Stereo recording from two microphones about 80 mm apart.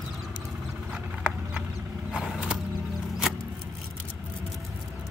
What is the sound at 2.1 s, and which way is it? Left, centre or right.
Mechanisms, centre.